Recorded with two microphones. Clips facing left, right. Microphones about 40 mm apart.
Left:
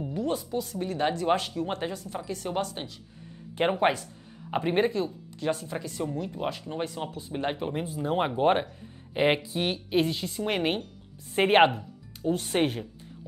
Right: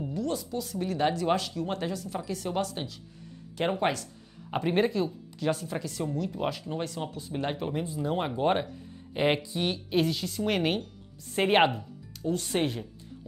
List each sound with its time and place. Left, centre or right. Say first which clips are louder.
0.1 s a woman's voice: left 3 dB; centre
0.7 s speech: right 2 dB; centre
1.3 s speech: left 2 dB; centre
9.4 s speech: left 1 dB; left
9.8 s speech: left 1 dB; centre